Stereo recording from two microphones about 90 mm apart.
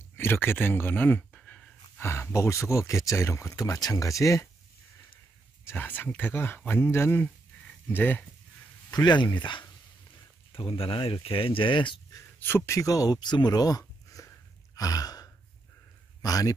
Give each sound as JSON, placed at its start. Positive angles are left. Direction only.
{"t": 0.2, "sound": "speech", "side_deg": 25}
{"t": 1.3, "sound": "a sound", "side_deg": 10}
{"t": 2.0, "sound": "speech", "side_deg": 30}
{"t": 5.7, "sound": "speech", "side_deg": 20}
{"t": 8.9, "sound": "speech", "side_deg": 55}
{"t": 10.5, "sound": "speech", "side_deg": 90}
{"t": 12.4, "sound": "speech", "side_deg": 25}
{"t": 14.8, "sound": "gasp", "side_deg": 45}
{"t": 16.2, "sound": "speech", "side_deg": 40}